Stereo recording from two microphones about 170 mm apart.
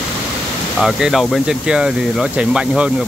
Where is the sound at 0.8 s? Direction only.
Centre (ahead or behind).